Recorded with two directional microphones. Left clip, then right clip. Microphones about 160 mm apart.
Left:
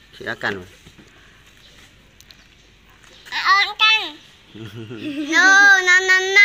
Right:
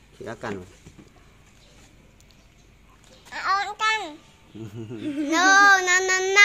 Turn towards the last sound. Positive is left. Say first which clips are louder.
# left 6 dB
turn(degrees=-90)